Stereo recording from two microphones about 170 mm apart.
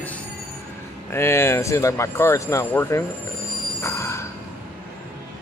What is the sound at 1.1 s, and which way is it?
Speech, 15° left (ahead or behind).